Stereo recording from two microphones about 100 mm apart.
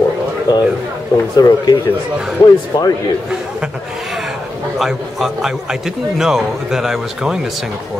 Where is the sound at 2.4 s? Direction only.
60° left (ahead or behind).